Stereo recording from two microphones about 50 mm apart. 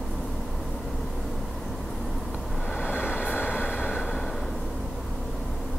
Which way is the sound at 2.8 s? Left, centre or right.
Left.